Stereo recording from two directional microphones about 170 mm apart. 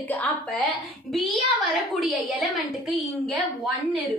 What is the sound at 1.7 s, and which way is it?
A woman's voice, centre (ahead or behind).